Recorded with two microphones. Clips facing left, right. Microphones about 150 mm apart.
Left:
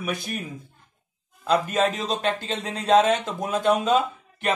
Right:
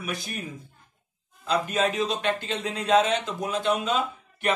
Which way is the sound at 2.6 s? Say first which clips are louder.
Left 4 dB; 35° left (ahead or behind).